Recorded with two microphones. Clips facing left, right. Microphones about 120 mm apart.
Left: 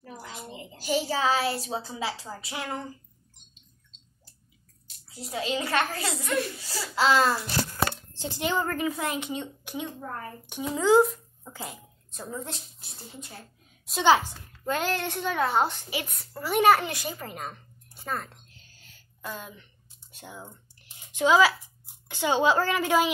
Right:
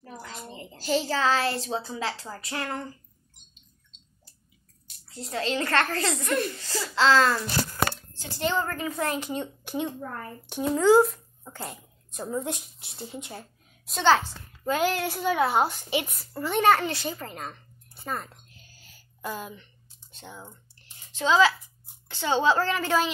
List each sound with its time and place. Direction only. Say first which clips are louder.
0.2 s a woman's voice: even; 10° left (ahead or behind)
4.8 s a child's voice: right 2 dB; 10° left (ahead or behind)
10.5 s speech: right 2 dB; centre (ahead or behind)
12.1 s a woman's voice: right 6 dB; 15° right (ahead or behind)
13.8 s a child's voice: even; 5° left (ahead or behind)
14.6 s a woman's voice: right 3 dB; 10° right (ahead or behind)
16.1 s a child's voice: even; centre (ahead or behind)
18.0 s speech: even; 5° right (ahead or behind)
18.8 s a sound: right 4 dB; 5° right (ahead or behind)
20.1 s a sound: left 1 dB; 10° left (ahead or behind)
22.0 s a child's voice: even; 15° left (ahead or behind)